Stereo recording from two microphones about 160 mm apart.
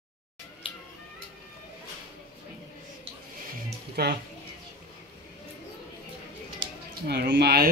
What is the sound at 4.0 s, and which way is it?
Speech, 80° right.